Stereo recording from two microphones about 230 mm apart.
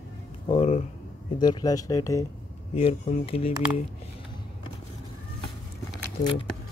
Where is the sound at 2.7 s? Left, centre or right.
Left.